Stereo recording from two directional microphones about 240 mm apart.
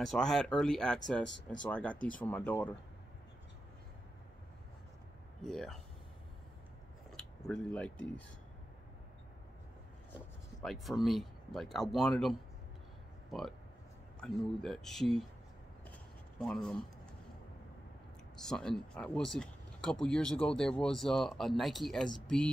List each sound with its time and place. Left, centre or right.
0.0 s speech: centre
1.2 s speech: left
1.6 s speech: centre
2.0 s speech: left
2.2 s speech: centre
5.4 s speech: centre
7.1 s speech: centre
10.1 s speech: centre
16.3 s speech: centre
18.3 s speech: centre